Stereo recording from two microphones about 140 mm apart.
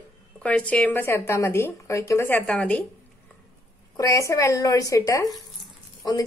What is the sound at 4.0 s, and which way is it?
Speech, 20° left (ahead or behind).